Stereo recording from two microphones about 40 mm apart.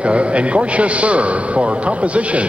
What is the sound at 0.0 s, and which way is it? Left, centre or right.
A man's voice, right.